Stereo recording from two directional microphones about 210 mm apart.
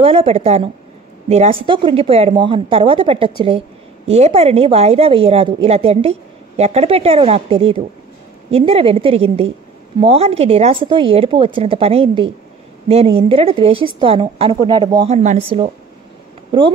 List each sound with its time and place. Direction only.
0.0 s a woman's voice: 30° right (ahead or behind)